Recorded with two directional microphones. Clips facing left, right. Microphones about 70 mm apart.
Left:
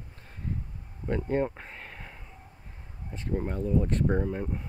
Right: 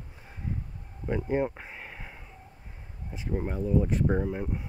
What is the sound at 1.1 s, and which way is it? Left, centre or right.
Speech, centre.